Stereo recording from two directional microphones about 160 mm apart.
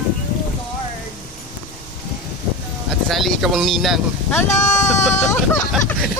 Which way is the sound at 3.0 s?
Centre (ahead or behind).